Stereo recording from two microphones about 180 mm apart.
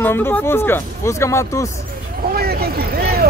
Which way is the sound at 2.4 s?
60° right (ahead or behind).